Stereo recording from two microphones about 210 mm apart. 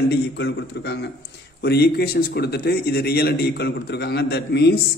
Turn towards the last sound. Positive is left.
turn(degrees=50)  # may be behind; listen again after turning